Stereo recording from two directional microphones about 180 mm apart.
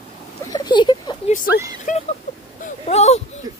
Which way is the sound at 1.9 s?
45° left (ahead or behind).